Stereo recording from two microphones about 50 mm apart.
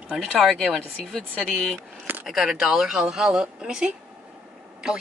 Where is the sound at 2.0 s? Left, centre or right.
Right.